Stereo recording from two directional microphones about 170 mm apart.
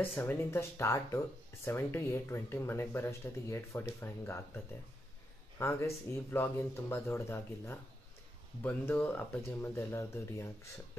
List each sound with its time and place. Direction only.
0.0 s speech: 10° left (ahead or behind)
5.6 s speech: 15° left (ahead or behind)